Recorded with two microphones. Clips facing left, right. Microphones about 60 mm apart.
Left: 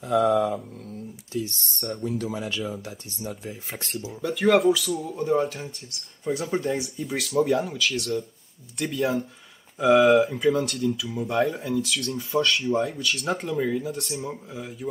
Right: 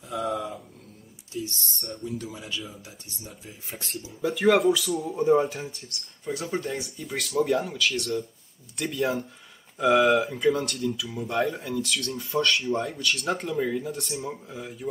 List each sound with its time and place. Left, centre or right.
0.0 s speech: left
1.3 s speech: left
4.2 s speech: centre
6.6 s speech: centre